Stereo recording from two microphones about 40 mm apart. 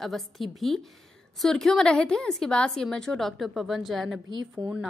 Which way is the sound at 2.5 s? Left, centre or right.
Left.